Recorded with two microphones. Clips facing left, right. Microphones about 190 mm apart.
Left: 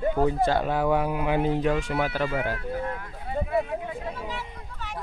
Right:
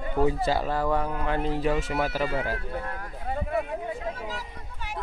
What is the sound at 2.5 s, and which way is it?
Speech, 40° right (ahead or behind).